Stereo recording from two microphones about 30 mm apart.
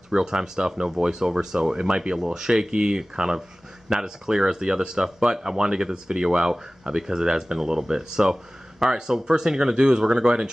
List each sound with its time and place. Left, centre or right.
0.1 s speech: right